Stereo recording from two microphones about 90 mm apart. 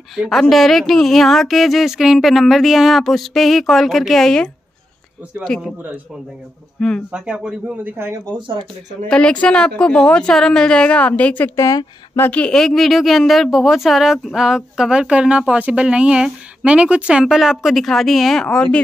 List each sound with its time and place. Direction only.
0.1 s speech: centre (ahead or behind)
7.1 s speech: 10° right (ahead or behind)
8.3 s speech: 70° right (ahead or behind)
9.1 s speech: 10° left (ahead or behind)
11.5 s speech: 40° left (ahead or behind)
12.2 s speech: 15° left (ahead or behind)